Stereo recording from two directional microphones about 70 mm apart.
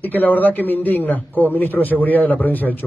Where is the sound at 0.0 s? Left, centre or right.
Left.